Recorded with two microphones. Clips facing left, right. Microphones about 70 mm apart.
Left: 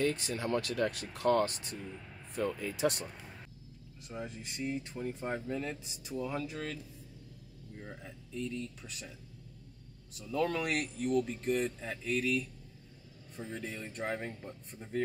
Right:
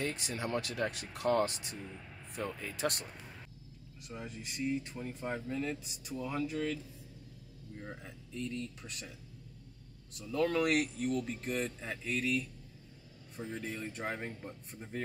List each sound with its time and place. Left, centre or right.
0.0 s speech: centre
4.1 s speech: centre
7.8 s speech: centre
10.1 s speech: centre